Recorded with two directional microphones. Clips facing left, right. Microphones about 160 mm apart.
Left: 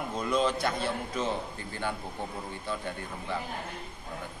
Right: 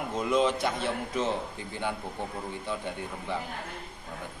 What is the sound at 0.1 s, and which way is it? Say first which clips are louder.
A man's voice: right 2 dB; 20° right (ahead or behind).